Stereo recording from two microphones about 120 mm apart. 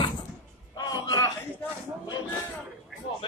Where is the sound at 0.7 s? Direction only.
30° left (ahead or behind).